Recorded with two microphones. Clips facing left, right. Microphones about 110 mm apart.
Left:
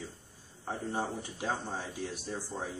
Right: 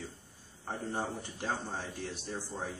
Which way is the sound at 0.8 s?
Centre (ahead or behind).